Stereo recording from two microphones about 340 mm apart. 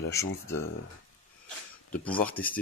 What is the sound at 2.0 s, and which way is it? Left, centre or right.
Speech, centre.